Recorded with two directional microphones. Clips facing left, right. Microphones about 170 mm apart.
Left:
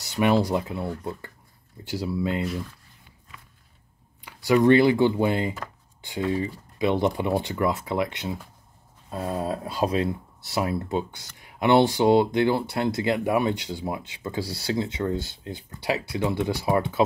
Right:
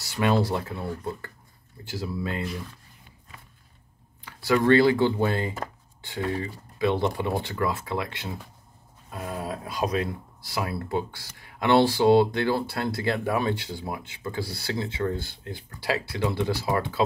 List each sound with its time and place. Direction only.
0.0 s speech: 20° left (ahead or behind)
4.2 s speech: 15° left (ahead or behind)